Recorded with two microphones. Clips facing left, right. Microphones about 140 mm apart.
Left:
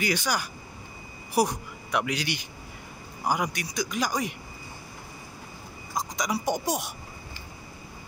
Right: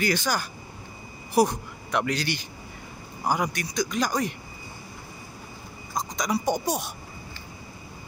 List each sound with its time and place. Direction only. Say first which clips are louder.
0.0 s speech: right 2 dB; 15° left (ahead or behind)
6.1 s speech: right 3 dB; 15° left (ahead or behind)